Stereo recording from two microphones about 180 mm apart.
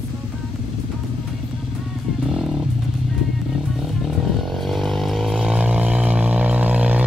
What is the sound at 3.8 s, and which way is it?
Vehicle, centre (ahead or behind).